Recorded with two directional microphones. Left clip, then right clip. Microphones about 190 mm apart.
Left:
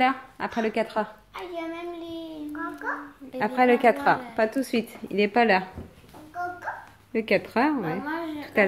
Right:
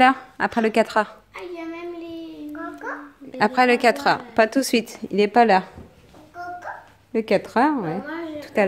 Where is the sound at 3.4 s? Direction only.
40° right (ahead or behind).